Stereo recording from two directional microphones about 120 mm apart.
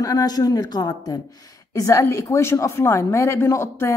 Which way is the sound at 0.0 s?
30° left (ahead or behind).